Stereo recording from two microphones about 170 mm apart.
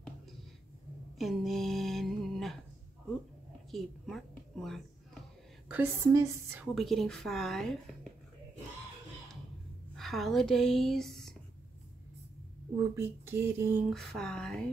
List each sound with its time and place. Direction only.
1.1 s a sound: centre (ahead or behind)
3.7 s a sound: centre (ahead or behind)
5.7 s speech: 15° right (ahead or behind)
6.7 s a woman's voice: centre (ahead or behind)
9.9 s speech: centre (ahead or behind)
12.7 s speech: 15° right (ahead or behind)
13.8 s a woman's voice: centre (ahead or behind)